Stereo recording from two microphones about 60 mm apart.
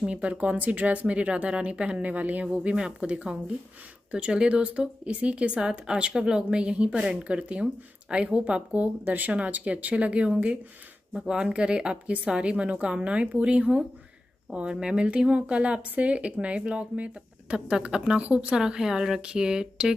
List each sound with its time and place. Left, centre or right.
0.0 s a woman's voice: right
18.6 s a woman's voice: centre